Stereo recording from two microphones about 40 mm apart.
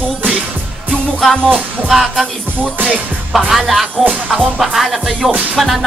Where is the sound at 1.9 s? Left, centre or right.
Centre.